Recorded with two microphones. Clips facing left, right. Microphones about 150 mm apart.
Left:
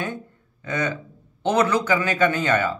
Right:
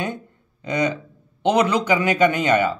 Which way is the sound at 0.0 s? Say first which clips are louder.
Right 2 dB; 15° right (ahead or behind).